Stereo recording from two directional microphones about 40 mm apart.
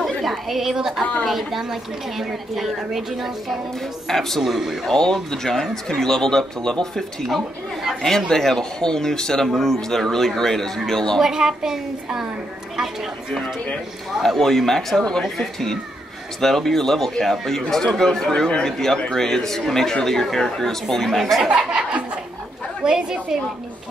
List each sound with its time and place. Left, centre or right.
0.0 s chatter: centre
1.2 s a woman's voice: centre
4.1 s speech: centre
4.4 s a woman's voice: centre
4.8 s speech: centre
8.3 s speech: centre
11.1 s a woman's voice: centre
14.2 s a woman's voice: centre
16.3 s a woman's voice: centre
21.5 s a woman's voice: right